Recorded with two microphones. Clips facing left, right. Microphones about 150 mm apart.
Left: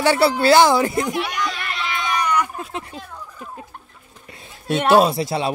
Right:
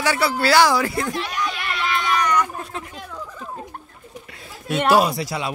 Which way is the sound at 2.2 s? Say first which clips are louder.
Even; 10° left (ahead or behind).